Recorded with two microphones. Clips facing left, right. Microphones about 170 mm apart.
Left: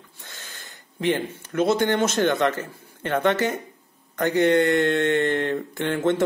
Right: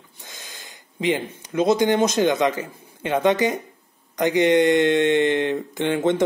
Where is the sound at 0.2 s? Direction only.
15° right (ahead or behind).